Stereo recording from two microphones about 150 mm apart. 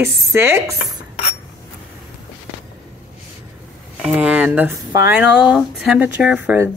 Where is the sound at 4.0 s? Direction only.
5° right (ahead or behind).